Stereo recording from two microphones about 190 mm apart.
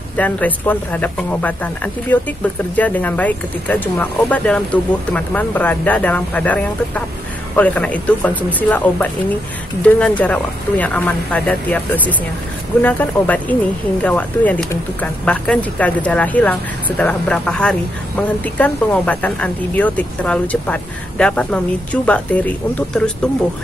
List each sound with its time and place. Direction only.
0.2 s speech: 10° left (ahead or behind)